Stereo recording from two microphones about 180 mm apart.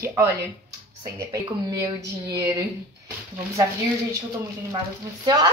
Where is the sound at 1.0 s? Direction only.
20° right (ahead or behind).